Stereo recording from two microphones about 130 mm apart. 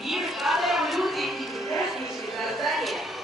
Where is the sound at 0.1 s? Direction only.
Centre (ahead or behind).